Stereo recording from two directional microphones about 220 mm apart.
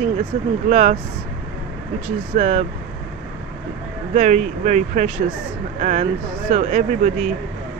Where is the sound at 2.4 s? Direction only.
35° right (ahead or behind).